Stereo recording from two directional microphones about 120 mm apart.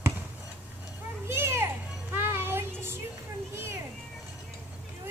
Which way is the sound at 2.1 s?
20° right (ahead or behind).